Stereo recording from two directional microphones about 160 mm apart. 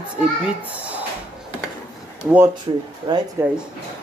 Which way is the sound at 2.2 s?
10° right (ahead or behind).